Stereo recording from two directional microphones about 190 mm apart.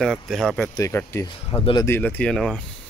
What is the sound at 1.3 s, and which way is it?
Speech, 30° left (ahead or behind).